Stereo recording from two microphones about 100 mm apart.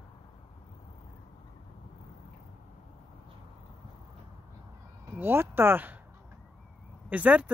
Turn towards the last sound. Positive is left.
turn(degrees=-15)  # may be behind; listen again after turning